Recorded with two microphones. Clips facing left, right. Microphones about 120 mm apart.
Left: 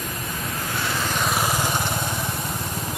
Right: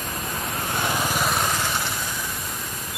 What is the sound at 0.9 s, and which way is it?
Lawn mower, 15° right (ahead or behind).